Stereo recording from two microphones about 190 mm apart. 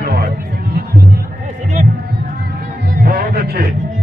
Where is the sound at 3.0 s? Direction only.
50° right (ahead or behind).